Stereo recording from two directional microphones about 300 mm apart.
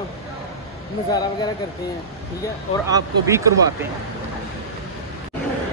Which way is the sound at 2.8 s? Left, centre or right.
Centre.